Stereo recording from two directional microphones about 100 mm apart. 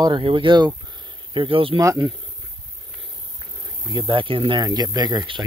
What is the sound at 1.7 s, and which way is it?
Speech, 40° right (ahead or behind).